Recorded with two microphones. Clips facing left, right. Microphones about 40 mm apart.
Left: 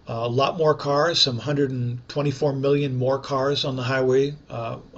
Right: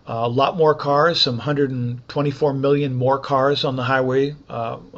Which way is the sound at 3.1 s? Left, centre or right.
Right.